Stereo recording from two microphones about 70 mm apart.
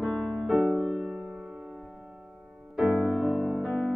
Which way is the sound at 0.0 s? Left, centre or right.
Centre.